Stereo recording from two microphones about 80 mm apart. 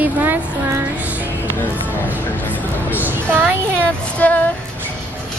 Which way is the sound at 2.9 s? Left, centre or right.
Right.